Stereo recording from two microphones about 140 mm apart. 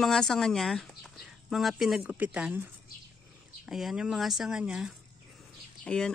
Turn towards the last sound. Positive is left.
turn(degrees=5)  # may be behind; listen again after turning